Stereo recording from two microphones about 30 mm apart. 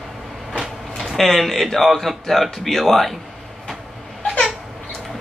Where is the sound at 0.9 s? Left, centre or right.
Centre.